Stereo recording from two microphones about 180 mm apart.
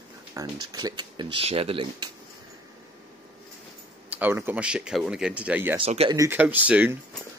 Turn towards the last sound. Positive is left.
turn(degrees=-10)  # may be behind; listen again after turning